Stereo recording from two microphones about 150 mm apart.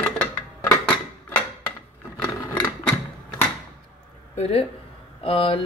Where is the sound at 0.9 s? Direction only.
10° left (ahead or behind).